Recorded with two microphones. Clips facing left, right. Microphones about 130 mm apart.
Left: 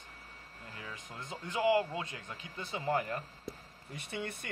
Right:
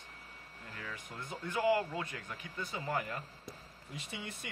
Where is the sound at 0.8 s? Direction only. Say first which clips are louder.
Right 1 dB; 20° left (ahead or behind).